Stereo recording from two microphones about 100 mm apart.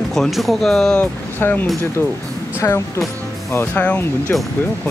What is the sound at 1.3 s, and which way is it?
Speech, 20° left (ahead or behind).